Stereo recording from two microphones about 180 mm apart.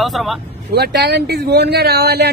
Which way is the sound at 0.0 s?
Centre (ahead or behind).